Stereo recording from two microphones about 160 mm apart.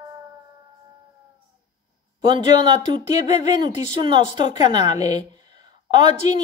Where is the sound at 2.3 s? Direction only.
30° right (ahead or behind).